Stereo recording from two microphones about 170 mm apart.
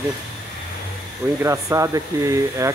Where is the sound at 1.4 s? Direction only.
15° right (ahead or behind).